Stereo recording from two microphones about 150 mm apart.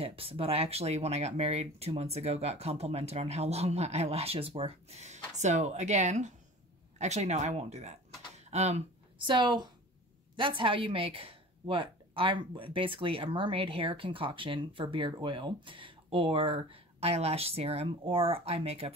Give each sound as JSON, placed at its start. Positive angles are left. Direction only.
{"t": 0.0, "sound": "speech", "side_deg": -40}
{"t": 9.2, "sound": "a woman's voice", "side_deg": -30}